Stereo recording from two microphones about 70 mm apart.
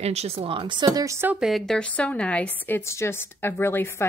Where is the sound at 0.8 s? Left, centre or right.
Right.